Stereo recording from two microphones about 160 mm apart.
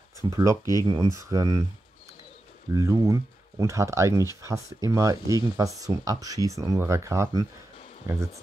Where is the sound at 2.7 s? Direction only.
20° right (ahead or behind).